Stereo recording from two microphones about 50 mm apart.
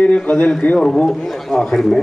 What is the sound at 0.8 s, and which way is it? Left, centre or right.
A man's voice, centre.